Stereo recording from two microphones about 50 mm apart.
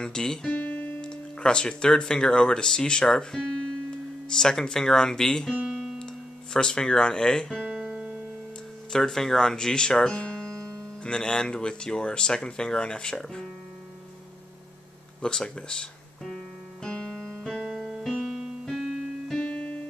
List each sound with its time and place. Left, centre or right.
0.0 s speech: centre
0.5 s music: left
1.1 s speech: centre
7.9 s music: right
8.9 s speech: centre
15.2 s speech: centre
16.8 s music: centre
18.2 s keyboard: centre; by 19.8 s left